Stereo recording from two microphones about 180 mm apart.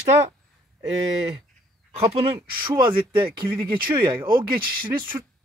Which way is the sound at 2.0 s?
30° right (ahead or behind).